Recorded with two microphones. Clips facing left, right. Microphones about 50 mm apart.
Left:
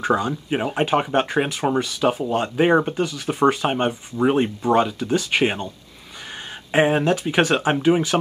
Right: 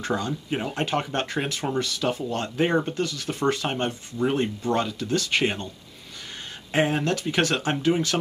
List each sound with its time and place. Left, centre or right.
0.0 s speech: centre
6.7 s speech: left